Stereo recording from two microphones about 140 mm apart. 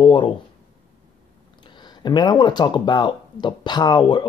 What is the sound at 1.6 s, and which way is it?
Speech, 35° left (ahead or behind).